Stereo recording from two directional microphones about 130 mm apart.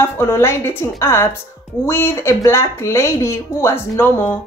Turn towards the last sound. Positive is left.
turn(degrees=20)  # may be behind; listen again after turning